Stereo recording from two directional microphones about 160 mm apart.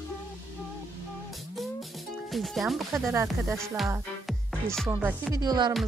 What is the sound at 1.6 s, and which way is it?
Music, centre (ahead or behind).